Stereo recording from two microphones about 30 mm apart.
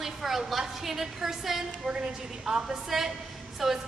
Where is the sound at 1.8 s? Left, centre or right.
Right.